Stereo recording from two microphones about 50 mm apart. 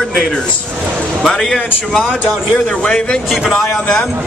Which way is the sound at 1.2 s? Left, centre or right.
Centre.